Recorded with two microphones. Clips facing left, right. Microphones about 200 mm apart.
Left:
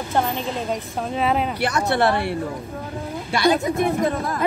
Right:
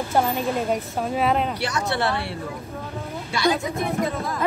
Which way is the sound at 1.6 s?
55° left (ahead or behind).